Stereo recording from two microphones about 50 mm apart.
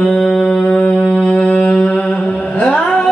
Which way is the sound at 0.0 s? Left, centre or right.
Centre.